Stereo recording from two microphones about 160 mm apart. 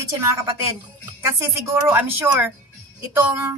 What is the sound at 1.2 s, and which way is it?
A woman's voice, 15° right (ahead or behind).